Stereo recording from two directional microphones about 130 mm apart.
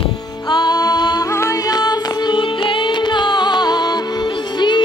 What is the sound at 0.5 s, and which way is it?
Music, 30° left (ahead or behind).